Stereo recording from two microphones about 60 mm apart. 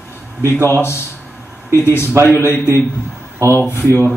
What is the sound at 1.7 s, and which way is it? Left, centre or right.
Speech, left.